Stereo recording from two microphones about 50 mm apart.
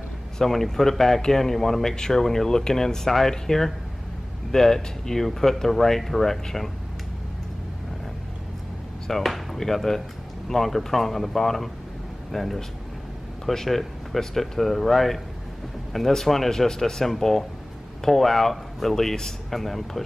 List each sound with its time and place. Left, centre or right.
0.4 s speech: centre
9.0 s speech: centre